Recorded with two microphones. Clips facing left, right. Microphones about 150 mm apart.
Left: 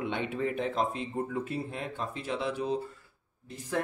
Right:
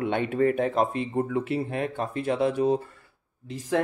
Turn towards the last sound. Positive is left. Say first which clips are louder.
# right 6 dB
turn(degrees=-90)